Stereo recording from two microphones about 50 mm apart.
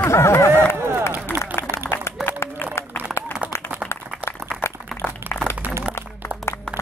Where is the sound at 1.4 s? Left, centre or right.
Left.